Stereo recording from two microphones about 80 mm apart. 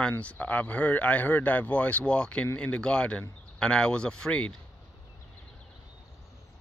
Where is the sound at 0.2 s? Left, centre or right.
Centre.